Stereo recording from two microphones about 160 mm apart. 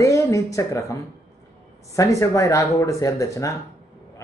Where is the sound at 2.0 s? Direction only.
20° left (ahead or behind).